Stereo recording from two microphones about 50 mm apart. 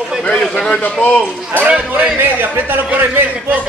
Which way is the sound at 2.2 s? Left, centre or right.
Right.